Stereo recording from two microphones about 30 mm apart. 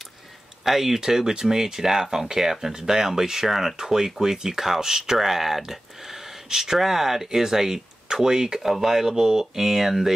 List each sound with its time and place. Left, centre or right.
0.7 s speech: centre